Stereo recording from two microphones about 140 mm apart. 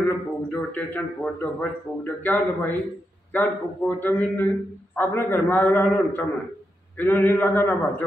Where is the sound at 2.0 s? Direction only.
15° left (ahead or behind).